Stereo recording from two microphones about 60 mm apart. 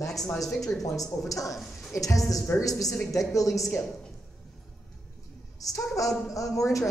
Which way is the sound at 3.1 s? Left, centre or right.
Left.